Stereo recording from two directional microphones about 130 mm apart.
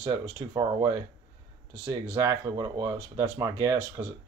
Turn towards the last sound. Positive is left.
turn(degrees=-25)  # may be behind; listen again after turning